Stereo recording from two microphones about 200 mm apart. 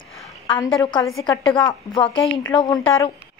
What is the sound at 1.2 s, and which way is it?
A woman's voice, 25° left (ahead or behind).